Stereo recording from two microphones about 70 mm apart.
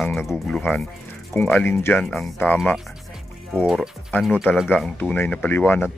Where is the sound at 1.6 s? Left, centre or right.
Left.